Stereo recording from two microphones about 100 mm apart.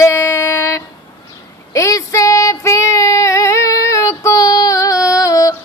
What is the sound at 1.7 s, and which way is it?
Child singing, 30° left (ahead or behind).